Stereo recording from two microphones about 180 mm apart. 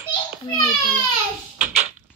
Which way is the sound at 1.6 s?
40° right (ahead or behind).